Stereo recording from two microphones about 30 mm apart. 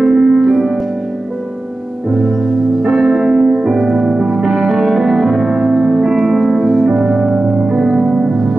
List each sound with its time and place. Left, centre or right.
0.0 s music: centre
2.8 s music: centre